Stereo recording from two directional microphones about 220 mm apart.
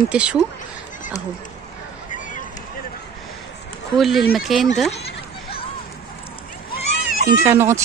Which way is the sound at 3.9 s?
Centre (ahead or behind).